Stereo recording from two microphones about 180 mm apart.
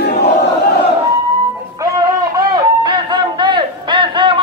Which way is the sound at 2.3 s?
25° right (ahead or behind).